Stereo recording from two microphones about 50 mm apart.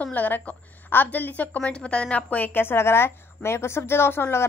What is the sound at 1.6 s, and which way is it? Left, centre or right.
Speech, centre.